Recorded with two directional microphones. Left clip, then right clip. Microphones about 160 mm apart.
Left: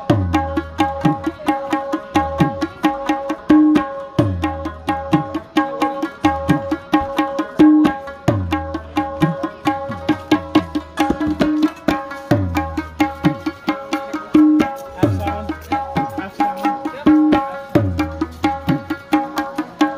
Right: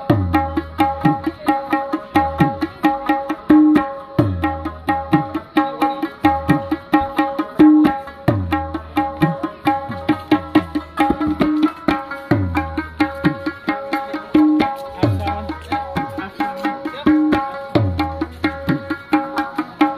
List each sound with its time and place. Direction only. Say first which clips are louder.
0.0 s music: right 1 dB; centre (ahead or behind)
11.1 s music: even; 25° left (ahead or behind)
12.1 s music: left 1 dB; 45° left (ahead or behind)
12.5 s music: even; 65° left (ahead or behind); by 17.6 s 40° left (ahead or behind)
17.7 s music: left 1 dB; 85° left
19.1 s music: even; 35° left (ahead or behind)